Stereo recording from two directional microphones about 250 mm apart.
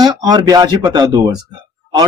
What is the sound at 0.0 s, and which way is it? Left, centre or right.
Speech, centre.